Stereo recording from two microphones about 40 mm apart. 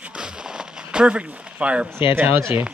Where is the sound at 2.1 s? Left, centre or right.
Right.